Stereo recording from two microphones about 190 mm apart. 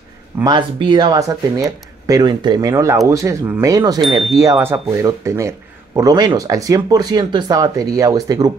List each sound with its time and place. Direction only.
0.4 s speech: 25° right (ahead or behind)